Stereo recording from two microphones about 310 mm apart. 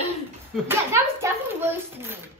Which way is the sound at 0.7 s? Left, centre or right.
Centre.